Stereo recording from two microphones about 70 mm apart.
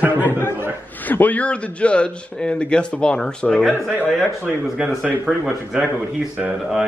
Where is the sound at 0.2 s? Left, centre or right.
Left; by 3.7 s centre.